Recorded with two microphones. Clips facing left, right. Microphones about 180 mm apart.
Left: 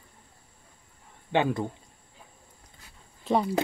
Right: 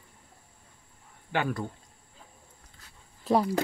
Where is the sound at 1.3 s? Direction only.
20° left (ahead or behind).